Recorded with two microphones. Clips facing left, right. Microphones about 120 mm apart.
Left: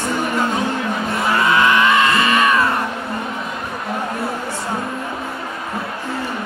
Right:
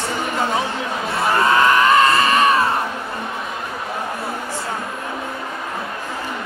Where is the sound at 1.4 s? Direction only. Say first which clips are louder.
Right 1 dB; 40° right (ahead or behind).